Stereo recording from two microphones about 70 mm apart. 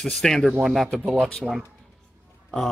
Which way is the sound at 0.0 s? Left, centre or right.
Centre.